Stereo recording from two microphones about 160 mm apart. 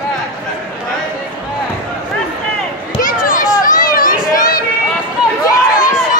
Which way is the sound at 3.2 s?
60° left (ahead or behind).